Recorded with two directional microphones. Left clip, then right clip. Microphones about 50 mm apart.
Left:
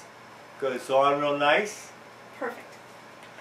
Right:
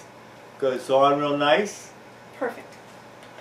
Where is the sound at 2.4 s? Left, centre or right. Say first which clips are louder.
Right 5 dB; centre.